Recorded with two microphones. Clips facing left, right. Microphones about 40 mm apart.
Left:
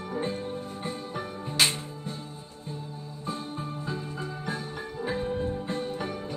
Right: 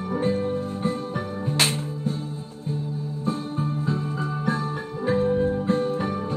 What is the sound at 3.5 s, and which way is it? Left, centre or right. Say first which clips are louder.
Music: right 7 dB; centre.